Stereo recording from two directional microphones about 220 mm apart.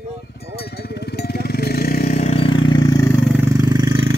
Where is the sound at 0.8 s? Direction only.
45° left (ahead or behind).